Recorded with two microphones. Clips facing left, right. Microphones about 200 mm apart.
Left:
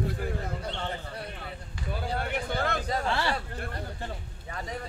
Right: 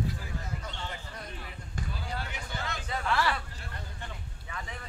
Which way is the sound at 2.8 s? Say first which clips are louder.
Left 2 dB; 40° left (ahead or behind).